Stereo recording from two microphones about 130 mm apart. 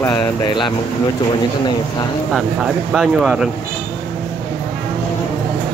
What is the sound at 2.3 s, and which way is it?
Speech, centre (ahead or behind).